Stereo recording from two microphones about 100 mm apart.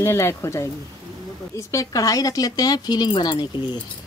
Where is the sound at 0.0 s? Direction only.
30° left (ahead or behind); by 3.4 s 50° left (ahead or behind).